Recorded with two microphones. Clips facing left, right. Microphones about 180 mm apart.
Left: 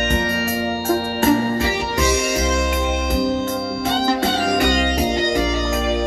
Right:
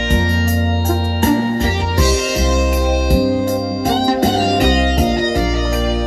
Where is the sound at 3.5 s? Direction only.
45° right (ahead or behind).